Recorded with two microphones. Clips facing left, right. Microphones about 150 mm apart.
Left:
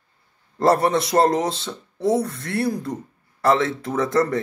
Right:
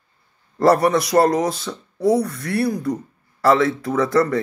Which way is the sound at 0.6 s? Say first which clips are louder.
Right 2 dB; 25° left (ahead or behind).